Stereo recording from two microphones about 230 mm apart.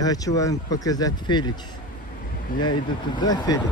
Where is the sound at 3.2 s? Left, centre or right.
Centre.